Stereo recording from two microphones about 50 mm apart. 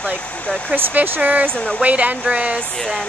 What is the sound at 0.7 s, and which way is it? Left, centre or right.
Speech, right.